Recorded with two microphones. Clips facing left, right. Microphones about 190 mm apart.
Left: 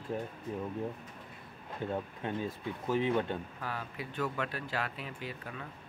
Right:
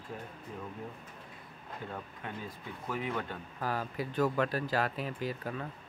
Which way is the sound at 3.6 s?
40° right (ahead or behind).